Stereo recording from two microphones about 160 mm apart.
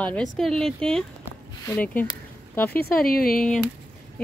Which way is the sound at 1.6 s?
15° left (ahead or behind).